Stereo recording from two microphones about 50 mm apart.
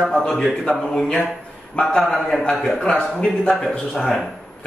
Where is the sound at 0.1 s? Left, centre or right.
Centre.